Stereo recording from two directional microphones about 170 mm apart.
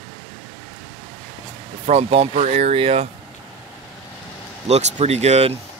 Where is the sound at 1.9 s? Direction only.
35° right (ahead or behind).